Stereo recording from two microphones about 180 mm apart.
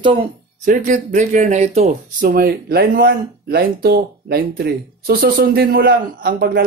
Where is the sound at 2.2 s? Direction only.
50° right (ahead or behind).